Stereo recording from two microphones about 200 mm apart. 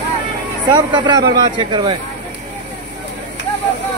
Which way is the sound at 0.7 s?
25° right (ahead or behind).